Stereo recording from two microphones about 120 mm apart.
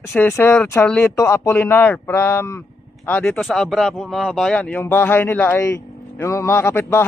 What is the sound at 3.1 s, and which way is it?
Speech, 10° left (ahead or behind).